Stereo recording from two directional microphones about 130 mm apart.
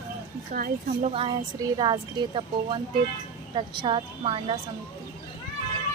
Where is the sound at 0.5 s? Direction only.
90° right.